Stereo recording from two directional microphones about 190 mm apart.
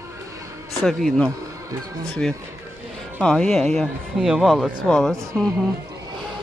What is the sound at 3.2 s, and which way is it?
Speech, 5° left (ahead or behind).